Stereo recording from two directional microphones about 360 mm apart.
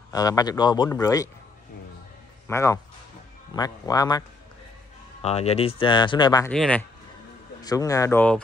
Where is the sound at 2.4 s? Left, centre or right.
Centre.